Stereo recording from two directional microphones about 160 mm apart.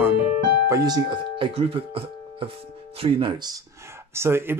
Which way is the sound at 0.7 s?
25° right (ahead or behind).